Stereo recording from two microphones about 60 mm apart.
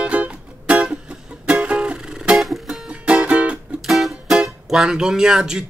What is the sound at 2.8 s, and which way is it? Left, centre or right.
Music, centre.